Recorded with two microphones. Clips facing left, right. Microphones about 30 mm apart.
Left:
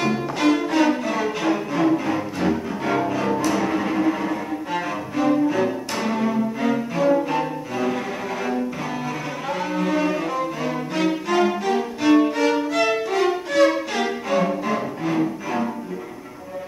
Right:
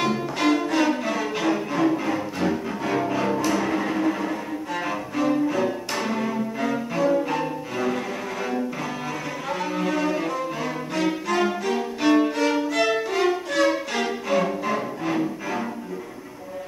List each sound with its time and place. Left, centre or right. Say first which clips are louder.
0.0 s music: left 2 dB; centre
0.6 s music: left 2 dB; centre
3.1 s cello: left 1 dB; centre
9.5 s cello: left 2 dB; centre
11.0 s music: left 3 dB; centre